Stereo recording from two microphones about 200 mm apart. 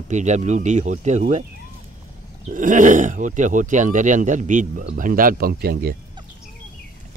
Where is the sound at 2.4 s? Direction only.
40° right (ahead or behind).